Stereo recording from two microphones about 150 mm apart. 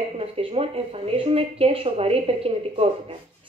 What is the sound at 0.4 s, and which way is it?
Speech, 40° right (ahead or behind).